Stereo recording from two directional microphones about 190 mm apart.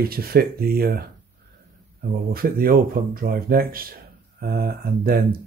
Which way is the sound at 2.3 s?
50° right (ahead or behind).